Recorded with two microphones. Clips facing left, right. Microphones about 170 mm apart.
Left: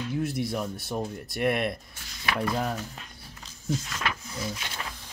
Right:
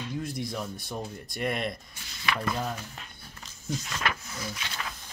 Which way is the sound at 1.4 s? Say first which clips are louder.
Left 4 dB; 60° left (ahead or behind).